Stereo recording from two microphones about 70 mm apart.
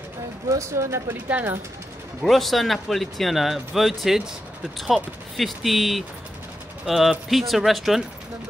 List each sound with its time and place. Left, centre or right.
0.5 s speech: right
1.0 s speech: right
2.2 s speech: centre